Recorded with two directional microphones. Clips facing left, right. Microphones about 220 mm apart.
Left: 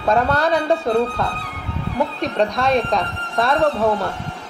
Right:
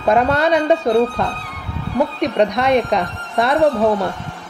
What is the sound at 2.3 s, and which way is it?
Speech, 20° right (ahead or behind).